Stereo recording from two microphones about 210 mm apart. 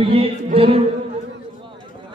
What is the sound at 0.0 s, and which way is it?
Speech, 25° right (ahead or behind).